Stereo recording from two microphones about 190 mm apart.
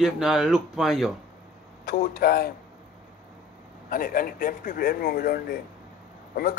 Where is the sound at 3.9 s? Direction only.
45° left (ahead or behind).